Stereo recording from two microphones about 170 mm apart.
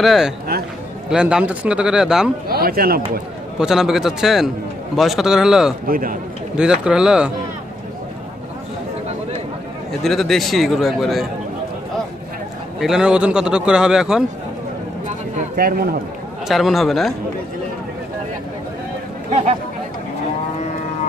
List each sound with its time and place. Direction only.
0.0 s a man's voice: centre (ahead or behind)
2.4 s speech: 65° right (ahead or behind)
3.5 s a man's voice: 5° right (ahead or behind)
5.9 s speech: 55° right (ahead or behind)
6.5 s a man's voice: 5° right (ahead or behind)
10.0 s a man's voice: centre (ahead or behind)
12.8 s a man's voice: 5° right (ahead or behind)
15.3 s speech: 60° right (ahead or behind)
16.4 s a man's voice: centre (ahead or behind)